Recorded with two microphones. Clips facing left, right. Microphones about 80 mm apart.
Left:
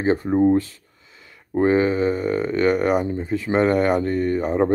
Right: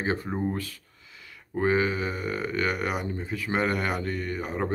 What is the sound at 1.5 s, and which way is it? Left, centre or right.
Speech, left.